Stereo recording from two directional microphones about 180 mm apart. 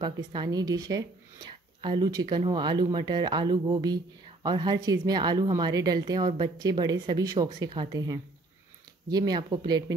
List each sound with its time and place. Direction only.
0.0 s speech: 25° right (ahead or behind)